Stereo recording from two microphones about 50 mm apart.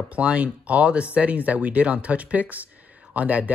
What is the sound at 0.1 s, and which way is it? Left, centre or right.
Speech, right.